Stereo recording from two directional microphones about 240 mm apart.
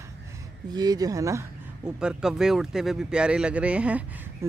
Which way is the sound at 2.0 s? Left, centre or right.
Centre.